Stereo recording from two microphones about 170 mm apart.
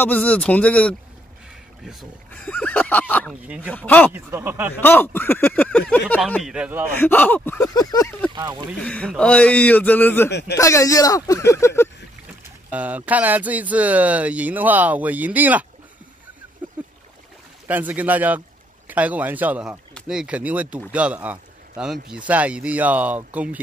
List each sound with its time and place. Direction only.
0.0 s speech: 10° left (ahead or behind)
2.3 s speech: 5° left (ahead or behind)
3.4 s speech: 10° right (ahead or behind)
3.7 s speech: 10° left (ahead or behind)
4.1 s speech: 15° right (ahead or behind)
4.7 s speech: 10° left (ahead or behind)
6.5 s speech: 10° right (ahead or behind)
7.0 s speech: 10° left (ahead or behind)
8.8 s speech: 5° left (ahead or behind)
12.7 s speech: 10° right (ahead or behind)
17.6 s speech: 10° right (ahead or behind)